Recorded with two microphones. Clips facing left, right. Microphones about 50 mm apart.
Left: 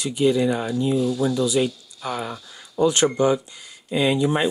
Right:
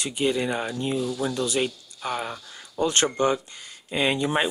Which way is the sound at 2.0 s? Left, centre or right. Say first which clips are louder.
Left 1 dB; right.